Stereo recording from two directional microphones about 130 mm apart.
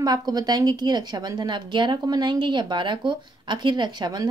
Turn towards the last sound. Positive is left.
turn(degrees=-35)  # may be behind; listen again after turning